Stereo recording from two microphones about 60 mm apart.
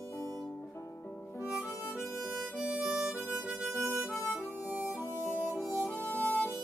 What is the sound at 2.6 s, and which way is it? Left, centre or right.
Harmonica, centre.